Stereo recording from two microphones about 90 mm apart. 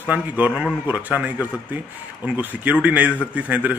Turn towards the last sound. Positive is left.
turn(degrees=-15)  # may be behind; listen again after turning